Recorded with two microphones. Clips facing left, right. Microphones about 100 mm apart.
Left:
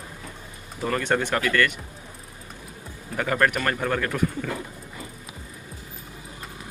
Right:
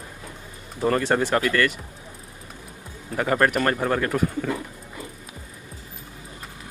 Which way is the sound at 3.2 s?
30° right (ahead or behind).